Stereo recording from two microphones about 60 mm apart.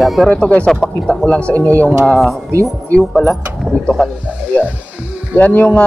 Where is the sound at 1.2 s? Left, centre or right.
Centre.